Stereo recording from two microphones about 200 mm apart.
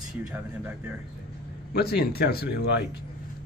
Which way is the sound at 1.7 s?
50° left (ahead or behind).